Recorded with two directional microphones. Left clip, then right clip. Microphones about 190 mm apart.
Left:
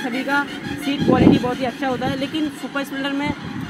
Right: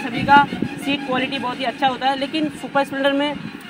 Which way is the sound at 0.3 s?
35° left (ahead or behind).